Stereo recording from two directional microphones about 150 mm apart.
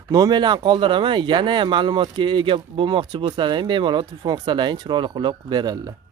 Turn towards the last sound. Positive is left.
turn(degrees=-30)  # may be behind; listen again after turning